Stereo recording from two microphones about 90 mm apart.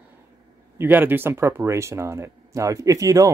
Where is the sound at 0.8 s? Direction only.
20° right (ahead or behind).